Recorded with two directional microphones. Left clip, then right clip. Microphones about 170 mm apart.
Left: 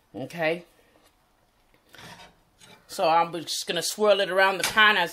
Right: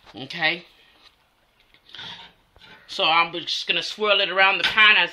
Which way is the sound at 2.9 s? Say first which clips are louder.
Right 2 dB; 70° left (ahead or behind).